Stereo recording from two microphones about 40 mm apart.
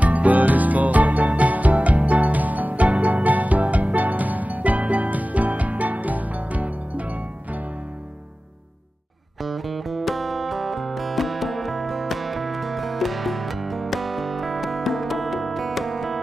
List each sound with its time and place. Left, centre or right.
0.0 s music: right
9.4 s music: centre